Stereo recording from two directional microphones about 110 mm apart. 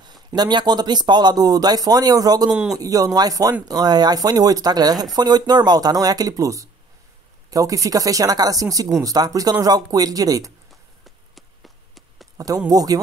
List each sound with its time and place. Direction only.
0.0 s speech: 40° right (ahead or behind)
2.5 s a man's voice: 10° right (ahead or behind)
2.8 s speech: 35° right (ahead or behind)
10.7 s a sound: centre (ahead or behind)
12.4 s speech: 35° right (ahead or behind)